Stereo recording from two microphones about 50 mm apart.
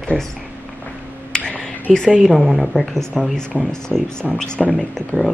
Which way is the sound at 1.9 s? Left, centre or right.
Centre.